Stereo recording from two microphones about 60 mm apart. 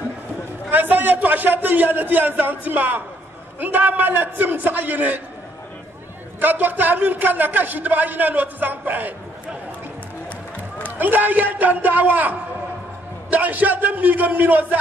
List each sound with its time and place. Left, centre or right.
0.7 s a man's voice: right
6.4 s a man's voice: right
11.0 s a man's voice: right